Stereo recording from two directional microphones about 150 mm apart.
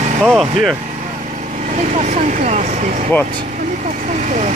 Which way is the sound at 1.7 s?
50° right (ahead or behind).